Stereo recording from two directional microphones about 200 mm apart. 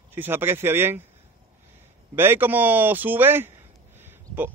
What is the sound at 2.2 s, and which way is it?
Speech, 10° right (ahead or behind).